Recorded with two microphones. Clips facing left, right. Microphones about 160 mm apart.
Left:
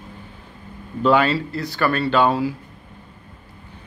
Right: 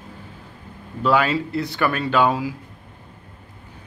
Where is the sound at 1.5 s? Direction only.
20° right (ahead or behind).